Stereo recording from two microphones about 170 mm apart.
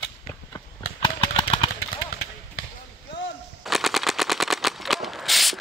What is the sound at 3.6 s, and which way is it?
Machine gun, centre (ahead or behind).